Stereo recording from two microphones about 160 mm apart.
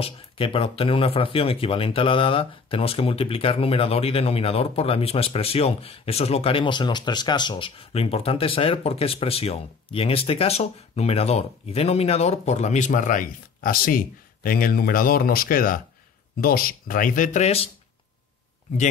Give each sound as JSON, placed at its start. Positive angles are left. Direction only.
{"t": 0.0, "sound": "speech", "side_deg": 35}